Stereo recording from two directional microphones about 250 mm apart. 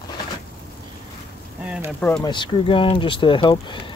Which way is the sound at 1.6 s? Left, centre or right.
Centre.